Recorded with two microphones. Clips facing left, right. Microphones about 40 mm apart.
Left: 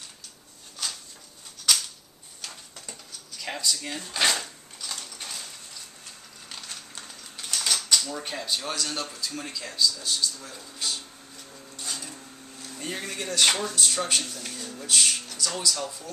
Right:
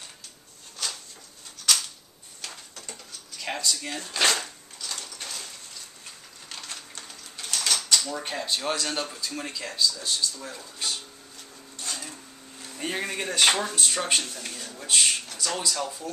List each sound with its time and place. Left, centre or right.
1.7 s a sound: centre
2.9 s drawer open or close: centre
4.1 s speech: centre
5.2 s a sound: centre
7.0 s typewriter: centre
8.1 s speech: centre
11.7 s printer: centre
12.7 s speech: right